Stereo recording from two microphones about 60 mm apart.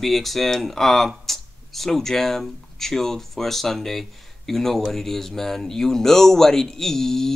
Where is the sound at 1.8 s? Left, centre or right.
Centre.